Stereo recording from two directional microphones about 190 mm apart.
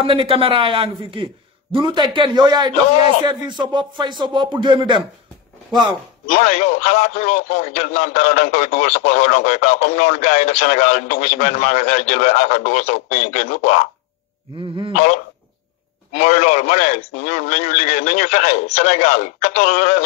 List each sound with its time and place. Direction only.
0.0 s a man's voice: 30° right (ahead or behind)
6.2 s a man's voice: 35° left (ahead or behind)
14.9 s a man's voice: 40° left (ahead or behind)